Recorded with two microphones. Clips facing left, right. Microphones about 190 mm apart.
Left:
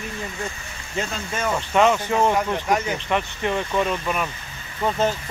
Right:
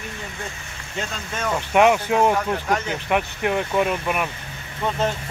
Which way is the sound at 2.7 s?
10° left (ahead or behind).